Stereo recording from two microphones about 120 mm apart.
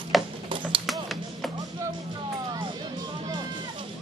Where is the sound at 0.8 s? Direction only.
Centre (ahead or behind).